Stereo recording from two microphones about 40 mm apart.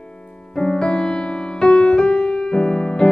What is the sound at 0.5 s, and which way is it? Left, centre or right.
Music, centre.